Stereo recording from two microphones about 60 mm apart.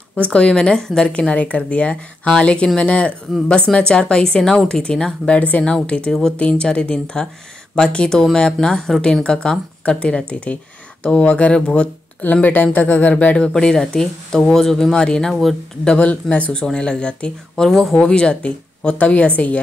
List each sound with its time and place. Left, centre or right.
0.1 s speech: left
1.1 s speech: left
12.2 s speech: left; by 16.1 s centre
16.1 s speech: left
16.5 s speech: centre
17.6 s speech: centre
18.0 s speech: centre